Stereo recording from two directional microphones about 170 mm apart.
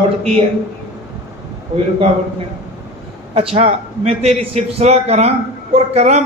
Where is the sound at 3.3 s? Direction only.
35° right (ahead or behind).